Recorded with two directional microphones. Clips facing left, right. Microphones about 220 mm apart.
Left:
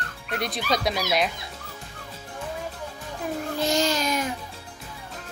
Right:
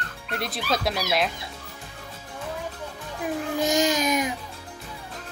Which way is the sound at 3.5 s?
15° right (ahead or behind).